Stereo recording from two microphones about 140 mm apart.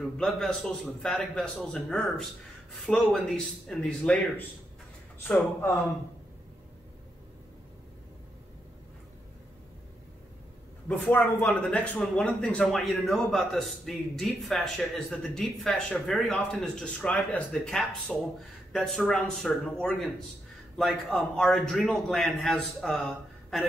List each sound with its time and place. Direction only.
0.0 s speech: 5° left (ahead or behind)
10.9 s speech: 10° left (ahead or behind)